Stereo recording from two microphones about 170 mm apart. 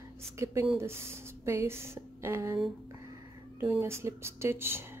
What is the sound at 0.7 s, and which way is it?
Speech, 15° right (ahead or behind).